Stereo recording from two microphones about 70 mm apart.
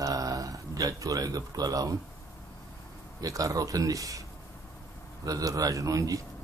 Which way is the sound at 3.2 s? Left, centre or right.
Right.